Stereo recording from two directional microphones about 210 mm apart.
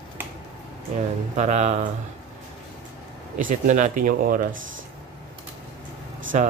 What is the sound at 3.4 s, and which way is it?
Speech, 35° right (ahead or behind).